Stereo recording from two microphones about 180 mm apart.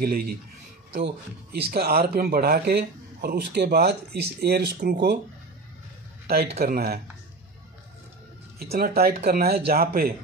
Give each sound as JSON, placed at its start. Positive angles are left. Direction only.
{"t": 0.0, "sound": "speech", "side_deg": -60}
{"t": 1.8, "sound": "speech", "side_deg": -55}
{"t": 6.2, "sound": "a man's voice", "side_deg": -60}
{"t": 8.7, "sound": "speech", "side_deg": -55}